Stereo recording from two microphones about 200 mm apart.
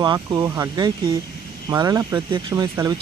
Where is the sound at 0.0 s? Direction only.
20° right (ahead or behind).